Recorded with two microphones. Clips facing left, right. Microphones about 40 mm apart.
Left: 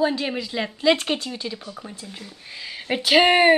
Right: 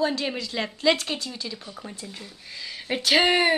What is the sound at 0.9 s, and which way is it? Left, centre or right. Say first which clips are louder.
Speech: left 4 dB; left.